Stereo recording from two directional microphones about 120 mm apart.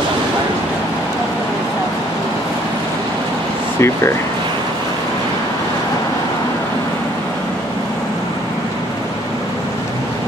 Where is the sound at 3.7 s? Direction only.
20° left (ahead or behind).